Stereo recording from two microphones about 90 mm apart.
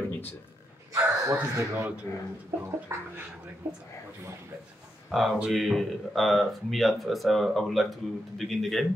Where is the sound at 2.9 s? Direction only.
30° right (ahead or behind).